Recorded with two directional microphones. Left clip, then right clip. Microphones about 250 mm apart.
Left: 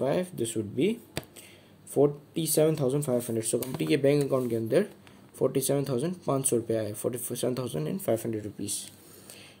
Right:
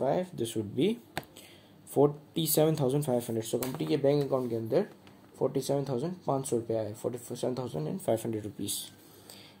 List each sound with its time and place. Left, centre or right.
0.0 s speech: centre
0.4 s speech: centre
2.0 s speech: centre
3.7 s speech: left
8.0 s speech: centre